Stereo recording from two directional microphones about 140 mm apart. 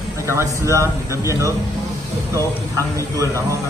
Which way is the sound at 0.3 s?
20° right (ahead or behind).